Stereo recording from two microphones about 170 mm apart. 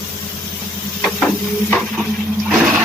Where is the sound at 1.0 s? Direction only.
Centre (ahead or behind).